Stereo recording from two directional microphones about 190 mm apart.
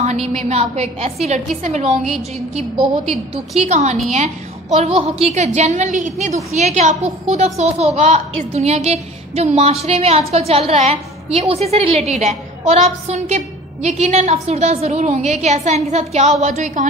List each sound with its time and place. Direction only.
0.3 s a child's voice: 35° right (ahead or behind)
3.5 s a child's voice: 35° right (ahead or behind)